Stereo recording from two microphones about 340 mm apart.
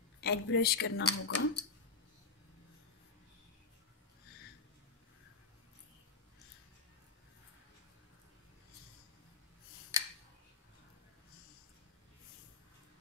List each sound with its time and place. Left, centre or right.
0.2 s speech: left